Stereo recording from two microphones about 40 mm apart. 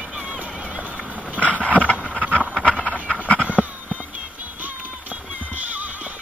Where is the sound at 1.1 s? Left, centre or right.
Right.